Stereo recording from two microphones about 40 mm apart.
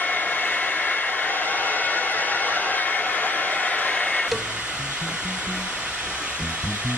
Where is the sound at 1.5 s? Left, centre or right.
Left.